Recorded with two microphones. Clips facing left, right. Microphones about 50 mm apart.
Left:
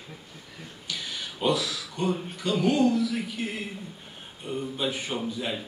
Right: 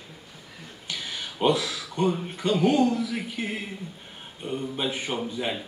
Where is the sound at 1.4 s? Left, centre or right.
Right.